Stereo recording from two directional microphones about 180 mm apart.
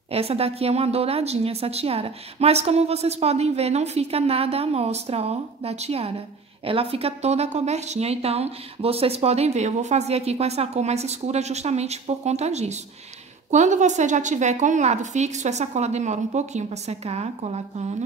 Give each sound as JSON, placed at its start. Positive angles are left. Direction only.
{"t": 0.1, "sound": "speech", "side_deg": -35}